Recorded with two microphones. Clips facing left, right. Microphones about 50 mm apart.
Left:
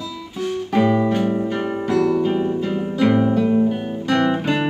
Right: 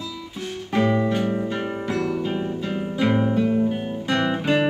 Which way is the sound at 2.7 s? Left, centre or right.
Centre.